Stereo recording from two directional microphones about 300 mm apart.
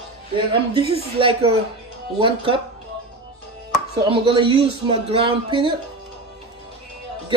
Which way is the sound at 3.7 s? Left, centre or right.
Centre.